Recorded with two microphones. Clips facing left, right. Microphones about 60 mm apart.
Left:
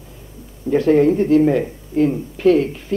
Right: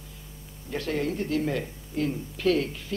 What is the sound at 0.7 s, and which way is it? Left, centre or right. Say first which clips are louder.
Speech: left 15 dB; left.